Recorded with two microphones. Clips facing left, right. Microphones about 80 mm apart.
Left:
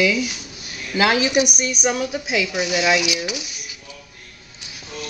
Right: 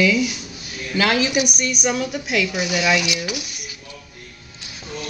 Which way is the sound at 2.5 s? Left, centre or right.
Centre.